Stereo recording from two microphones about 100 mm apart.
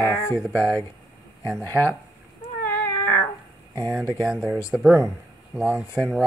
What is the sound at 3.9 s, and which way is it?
Speech, 5° right (ahead or behind).